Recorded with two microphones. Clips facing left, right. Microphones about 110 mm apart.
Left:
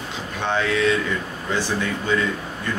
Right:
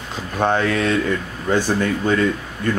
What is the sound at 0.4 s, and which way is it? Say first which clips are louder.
Speech: right 3 dB; 45° right (ahead or behind).